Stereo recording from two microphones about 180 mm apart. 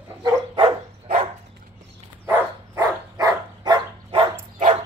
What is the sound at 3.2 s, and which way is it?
Dog, 20° right (ahead or behind).